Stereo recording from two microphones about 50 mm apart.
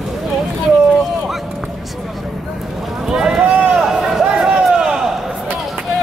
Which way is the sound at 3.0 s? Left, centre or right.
Centre.